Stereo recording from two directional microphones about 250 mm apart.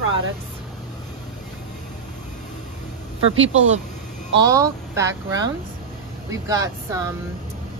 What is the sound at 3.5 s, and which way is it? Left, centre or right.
Speech, right.